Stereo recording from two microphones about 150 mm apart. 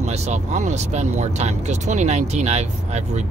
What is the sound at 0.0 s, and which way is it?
Speech, 50° right (ahead or behind).